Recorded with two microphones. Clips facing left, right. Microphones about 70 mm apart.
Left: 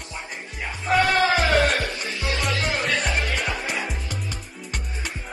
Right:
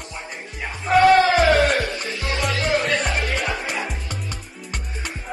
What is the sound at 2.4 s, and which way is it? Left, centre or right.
Music, centre.